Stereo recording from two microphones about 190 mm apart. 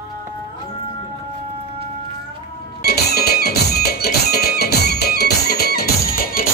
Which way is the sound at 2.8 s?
55° left (ahead or behind).